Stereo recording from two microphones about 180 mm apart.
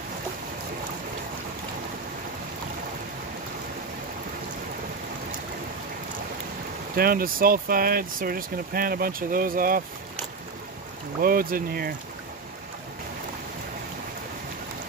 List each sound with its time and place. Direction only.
7.0 s speech: 55° right (ahead or behind)
11.1 s speech: 55° right (ahead or behind)